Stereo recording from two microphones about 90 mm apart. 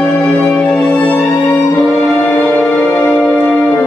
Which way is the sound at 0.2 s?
20° left (ahead or behind).